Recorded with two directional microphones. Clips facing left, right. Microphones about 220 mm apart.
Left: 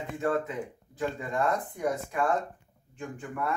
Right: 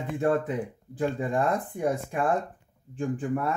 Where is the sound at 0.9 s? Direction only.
30° right (ahead or behind).